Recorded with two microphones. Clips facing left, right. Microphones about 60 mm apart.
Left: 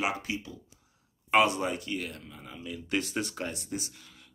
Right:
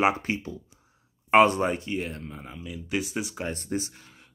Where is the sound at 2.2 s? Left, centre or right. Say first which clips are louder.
Right 7 dB; right.